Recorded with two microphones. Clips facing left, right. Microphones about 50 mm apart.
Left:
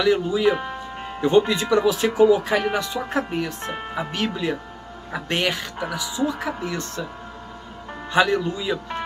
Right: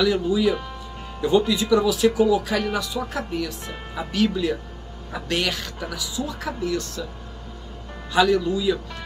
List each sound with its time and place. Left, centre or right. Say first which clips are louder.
0.0 s speech: left 1 dB; left
8.1 s speech: right 1 dB; left